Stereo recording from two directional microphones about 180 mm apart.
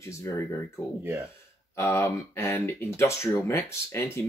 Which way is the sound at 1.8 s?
15° left (ahead or behind).